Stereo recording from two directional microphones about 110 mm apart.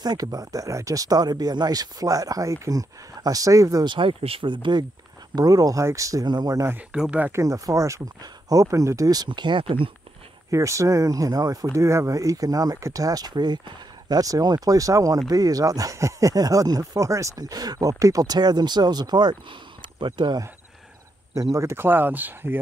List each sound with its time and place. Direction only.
0.0 s speech: 35° right (ahead or behind)
3.9 s speech: 55° right (ahead or behind)
5.3 s speech: 35° right (ahead or behind)
6.9 s speech: 10° right (ahead or behind)
7.4 s speech: 30° right (ahead or behind); by 9.8 s 50° right (ahead or behind)
10.5 s speech: 30° right (ahead or behind)
21.5 s speech: 25° right (ahead or behind)